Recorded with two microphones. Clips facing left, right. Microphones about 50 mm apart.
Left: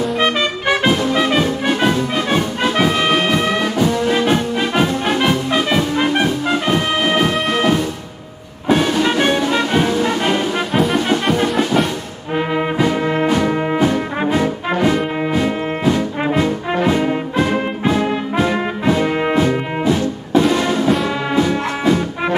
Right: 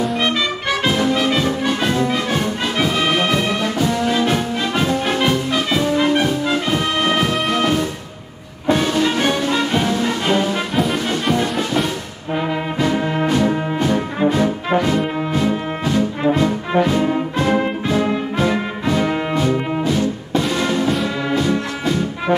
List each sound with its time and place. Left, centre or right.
0.2 s music: centre
1.1 s brass instrument: left
2.8 s brass instrument: centre
4.1 s music: left
6.2 s brass instrument: left
8.6 s music: centre
10.7 s music: centre
12.4 s trombone: centre
13.7 s brass instrument: centre
15.8 s brass instrument: centre
16.8 s music: centre
19.3 s brass instrument: left
19.8 s music: centre
21.4 s music: left